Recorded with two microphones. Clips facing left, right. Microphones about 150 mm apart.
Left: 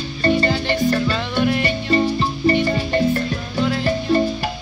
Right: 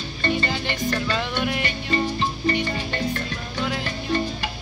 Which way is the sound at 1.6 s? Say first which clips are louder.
Left 6 dB; 40° left (ahead or behind).